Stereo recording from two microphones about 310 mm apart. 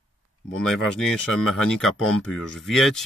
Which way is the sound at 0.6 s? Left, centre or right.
Centre.